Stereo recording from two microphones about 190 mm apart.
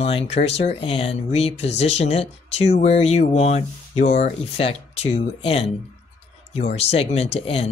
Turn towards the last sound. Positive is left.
turn(degrees=30)  # may be behind; listen again after turning